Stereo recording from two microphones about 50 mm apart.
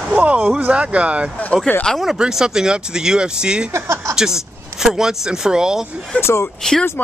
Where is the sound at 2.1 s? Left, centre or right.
Centre.